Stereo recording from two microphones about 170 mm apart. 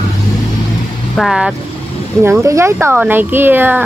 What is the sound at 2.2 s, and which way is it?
Speech, 15° right (ahead or behind).